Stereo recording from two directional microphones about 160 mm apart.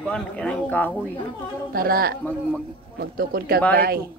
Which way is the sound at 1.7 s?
65° right (ahead or behind).